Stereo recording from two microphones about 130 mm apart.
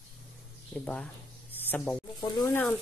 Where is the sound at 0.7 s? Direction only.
10° left (ahead or behind).